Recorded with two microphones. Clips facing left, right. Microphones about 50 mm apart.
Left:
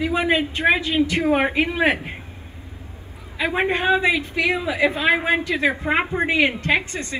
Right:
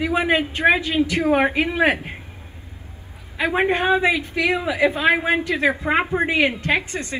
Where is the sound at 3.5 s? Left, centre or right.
Right.